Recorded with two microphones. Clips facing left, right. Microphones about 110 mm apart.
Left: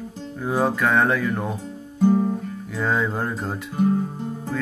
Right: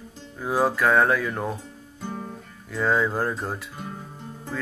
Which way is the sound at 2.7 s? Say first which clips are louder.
Right 1 dB; centre (ahead or behind).